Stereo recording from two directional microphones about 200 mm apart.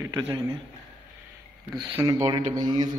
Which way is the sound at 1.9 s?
15° right (ahead or behind).